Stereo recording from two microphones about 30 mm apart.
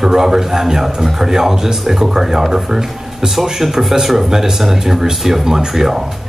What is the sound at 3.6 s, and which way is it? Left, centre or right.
A man's voice, centre.